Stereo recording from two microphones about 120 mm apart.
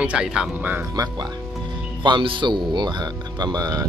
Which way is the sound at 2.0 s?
45° right (ahead or behind).